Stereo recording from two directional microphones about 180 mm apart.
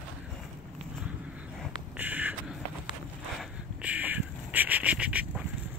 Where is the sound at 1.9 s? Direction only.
10° right (ahead or behind).